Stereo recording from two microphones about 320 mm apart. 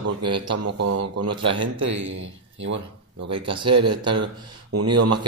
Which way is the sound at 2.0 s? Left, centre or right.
Right.